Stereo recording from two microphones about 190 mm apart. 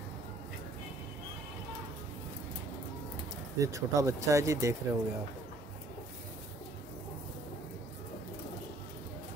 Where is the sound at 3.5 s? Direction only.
15° right (ahead or behind).